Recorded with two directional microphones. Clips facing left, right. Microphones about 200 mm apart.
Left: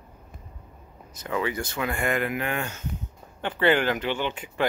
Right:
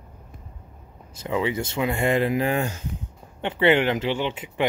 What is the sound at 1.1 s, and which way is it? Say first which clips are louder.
Speech: right 3 dB; 25° right (ahead or behind).